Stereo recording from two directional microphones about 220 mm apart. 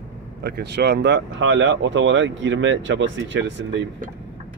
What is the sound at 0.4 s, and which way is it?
Speech, 50° right (ahead or behind).